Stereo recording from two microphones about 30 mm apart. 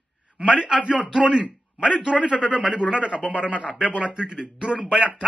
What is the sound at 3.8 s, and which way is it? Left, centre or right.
A man's voice, right.